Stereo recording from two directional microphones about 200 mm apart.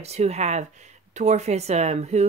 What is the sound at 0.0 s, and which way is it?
Speech, 30° right (ahead or behind).